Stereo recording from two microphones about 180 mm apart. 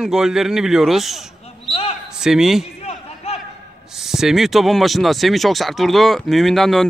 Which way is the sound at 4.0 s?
Centre (ahead or behind).